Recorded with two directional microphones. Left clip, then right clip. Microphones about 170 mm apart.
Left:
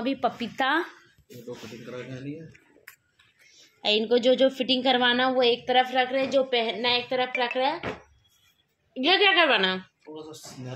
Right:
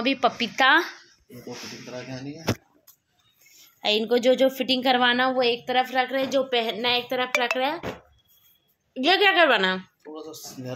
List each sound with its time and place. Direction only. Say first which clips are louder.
0.0 s speech: right 5 dB; centre (ahead or behind)
3.4 s a woman's voice: right 1 dB; 20° right (ahead or behind)
8.9 s a woman's voice: right 1 dB; 10° right (ahead or behind)
10.1 s speech: right 3 dB; 45° right (ahead or behind)